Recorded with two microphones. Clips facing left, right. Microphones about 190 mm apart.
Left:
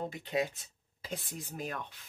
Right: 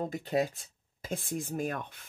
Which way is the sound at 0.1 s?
45° right (ahead or behind).